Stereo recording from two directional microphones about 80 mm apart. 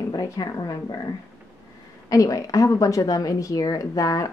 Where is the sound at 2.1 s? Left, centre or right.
Left.